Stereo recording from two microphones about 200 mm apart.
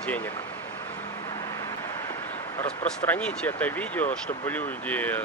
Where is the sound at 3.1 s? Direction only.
5° left (ahead or behind).